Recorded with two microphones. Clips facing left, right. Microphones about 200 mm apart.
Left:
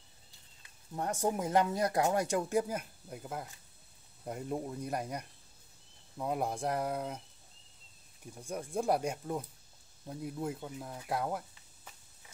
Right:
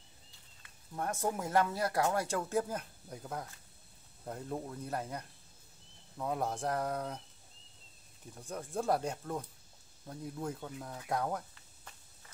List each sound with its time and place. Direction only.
0.6 s speech: 20° left (ahead or behind)
8.4 s speech: 10° left (ahead or behind)